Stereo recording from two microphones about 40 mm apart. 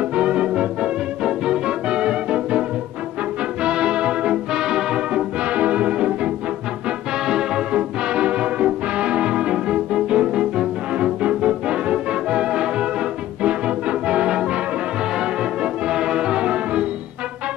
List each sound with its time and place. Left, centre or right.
0.0 s music: right
1.2 s music: centre
3.6 s music: right
5.4 s music: right
7.2 s music: centre